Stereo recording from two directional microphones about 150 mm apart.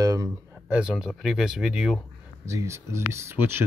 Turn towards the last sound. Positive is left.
turn(degrees=-15)  # may be behind; listen again after turning